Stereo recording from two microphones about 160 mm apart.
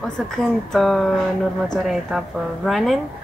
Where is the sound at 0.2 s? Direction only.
Centre (ahead or behind).